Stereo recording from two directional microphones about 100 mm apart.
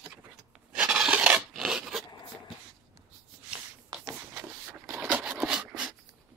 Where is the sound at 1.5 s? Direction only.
5° right (ahead or behind).